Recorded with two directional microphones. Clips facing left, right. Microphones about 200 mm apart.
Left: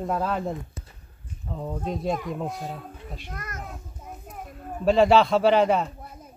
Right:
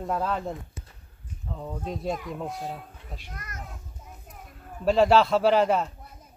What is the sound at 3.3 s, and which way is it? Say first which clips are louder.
Speech: left 5 dB; 50° left (ahead or behind).